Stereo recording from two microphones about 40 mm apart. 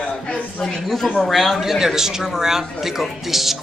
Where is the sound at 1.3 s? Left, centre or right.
Centre.